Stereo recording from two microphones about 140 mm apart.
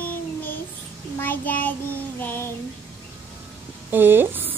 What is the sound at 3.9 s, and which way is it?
Speech, 15° right (ahead or behind).